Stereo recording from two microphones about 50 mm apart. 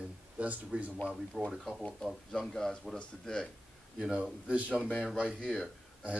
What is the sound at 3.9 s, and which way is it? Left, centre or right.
Speech, centre.